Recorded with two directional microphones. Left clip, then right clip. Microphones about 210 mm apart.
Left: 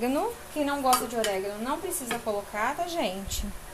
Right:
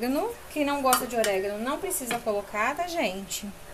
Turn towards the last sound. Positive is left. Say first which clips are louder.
# right 1 dB
turn(degrees=0)  # may be behind; listen again after turning